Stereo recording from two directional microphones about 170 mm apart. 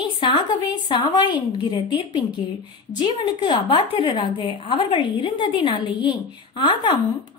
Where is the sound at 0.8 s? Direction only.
25° left (ahead or behind).